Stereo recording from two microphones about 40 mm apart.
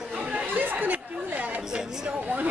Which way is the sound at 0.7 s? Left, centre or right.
Right.